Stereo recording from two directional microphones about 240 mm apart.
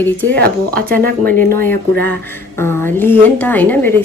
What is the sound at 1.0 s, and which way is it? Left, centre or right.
Speech, right.